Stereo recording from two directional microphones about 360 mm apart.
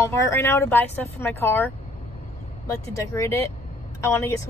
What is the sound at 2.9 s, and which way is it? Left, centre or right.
A woman's voice, centre.